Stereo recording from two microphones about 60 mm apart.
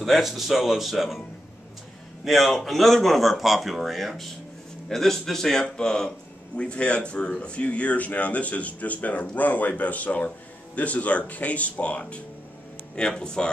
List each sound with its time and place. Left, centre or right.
0.0 s speech: centre
2.2 s a man's voice: centre